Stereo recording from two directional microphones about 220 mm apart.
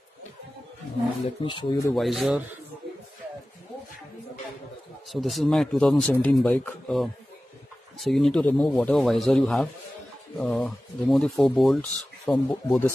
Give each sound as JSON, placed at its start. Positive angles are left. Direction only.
{"t": 1.4, "sound": "speech", "side_deg": 20}
{"t": 2.0, "sound": "speech", "side_deg": 0}
{"t": 5.1, "sound": "speech", "side_deg": 0}